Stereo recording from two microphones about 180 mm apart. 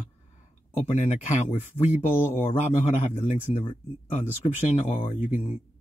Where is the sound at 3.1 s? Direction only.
35° left (ahead or behind).